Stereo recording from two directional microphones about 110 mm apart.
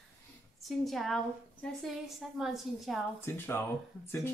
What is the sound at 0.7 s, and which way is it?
A woman's voice, centre (ahead or behind).